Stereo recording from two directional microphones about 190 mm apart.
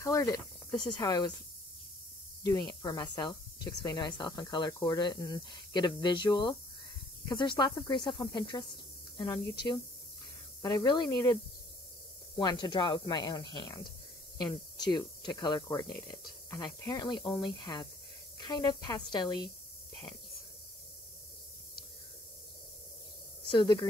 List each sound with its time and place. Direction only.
0.0 s speech: 15° left (ahead or behind)
2.4 s speech: 20° left (ahead or behind)
10.6 s speech: 20° left (ahead or behind)
12.4 s speech: 20° left (ahead or behind)
23.5 s speech: 25° left (ahead or behind)